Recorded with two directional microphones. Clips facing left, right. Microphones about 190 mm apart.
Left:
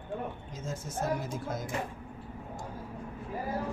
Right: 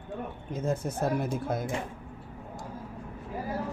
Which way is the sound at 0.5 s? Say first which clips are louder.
Right 8 dB; 60° right (ahead or behind).